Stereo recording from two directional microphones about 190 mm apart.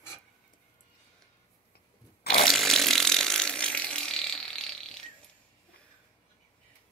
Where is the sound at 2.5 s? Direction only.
Centre (ahead or behind).